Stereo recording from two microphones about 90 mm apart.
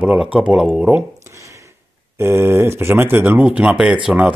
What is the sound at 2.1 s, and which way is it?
Speech, 25° right (ahead or behind).